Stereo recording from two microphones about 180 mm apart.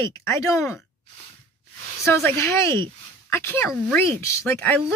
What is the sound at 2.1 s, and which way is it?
Speech, 15° left (ahead or behind).